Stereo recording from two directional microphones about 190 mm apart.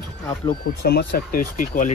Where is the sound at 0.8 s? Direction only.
55° left (ahead or behind).